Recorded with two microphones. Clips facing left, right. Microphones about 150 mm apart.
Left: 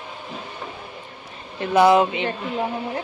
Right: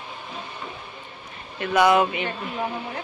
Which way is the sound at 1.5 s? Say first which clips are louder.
Left 3 dB; 30° left (ahead or behind).